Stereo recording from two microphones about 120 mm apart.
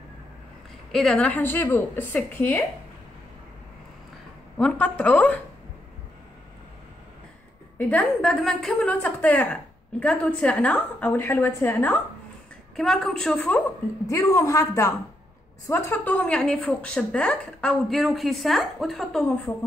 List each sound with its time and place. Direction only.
0.9 s a woman's voice: 5° left (ahead or behind)
4.6 s a woman's voice: 10° left (ahead or behind)
7.7 s a woman's voice: 10° left (ahead or behind)
12.7 s a woman's voice: 5° left (ahead or behind)
14.0 s a woman's voice: 25° left (ahead or behind); by 19.5 s 5° left (ahead or behind)